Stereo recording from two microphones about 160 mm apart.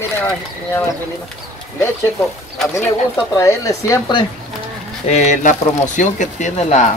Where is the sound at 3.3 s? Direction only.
20° left (ahead or behind).